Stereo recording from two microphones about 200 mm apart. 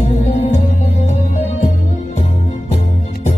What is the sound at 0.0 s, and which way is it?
Music, 35° left (ahead or behind).